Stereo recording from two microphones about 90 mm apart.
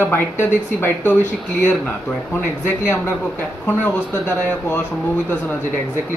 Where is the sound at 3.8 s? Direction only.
25° left (ahead or behind).